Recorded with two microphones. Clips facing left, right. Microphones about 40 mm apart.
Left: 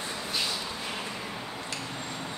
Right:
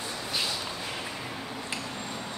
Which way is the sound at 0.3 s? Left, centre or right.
Centre.